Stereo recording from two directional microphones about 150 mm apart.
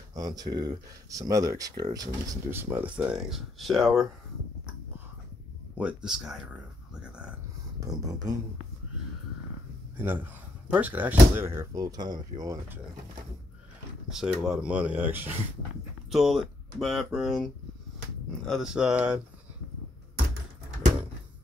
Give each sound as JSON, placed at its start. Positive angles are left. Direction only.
{"t": 0.1, "sound": "speech", "side_deg": -25}
{"t": 2.5, "sound": "speech", "side_deg": -15}
{"t": 5.8, "sound": "speech", "side_deg": -5}
{"t": 7.8, "sound": "speech", "side_deg": -25}
{"t": 9.9, "sound": "speech", "side_deg": -15}
{"t": 14.0, "sound": "speech", "side_deg": -5}
{"t": 16.1, "sound": "speech", "side_deg": 0}